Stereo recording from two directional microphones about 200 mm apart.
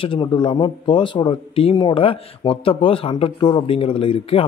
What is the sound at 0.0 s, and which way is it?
Speech, 25° left (ahead or behind).